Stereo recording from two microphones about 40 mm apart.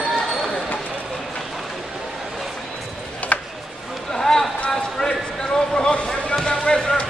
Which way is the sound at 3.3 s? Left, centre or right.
Left.